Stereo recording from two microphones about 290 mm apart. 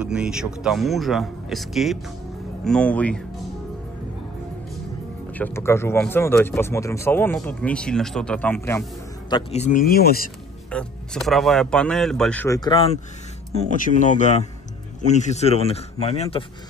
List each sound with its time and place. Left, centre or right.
0.0 s speech: centre
5.3 s speech: centre
9.3 s speech: left
10.7 s speech: centre